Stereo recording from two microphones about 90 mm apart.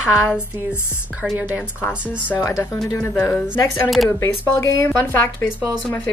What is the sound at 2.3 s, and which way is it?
Speech, 35° left (ahead or behind).